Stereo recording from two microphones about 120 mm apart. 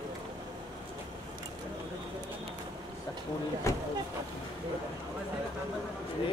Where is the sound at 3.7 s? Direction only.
25° left (ahead or behind).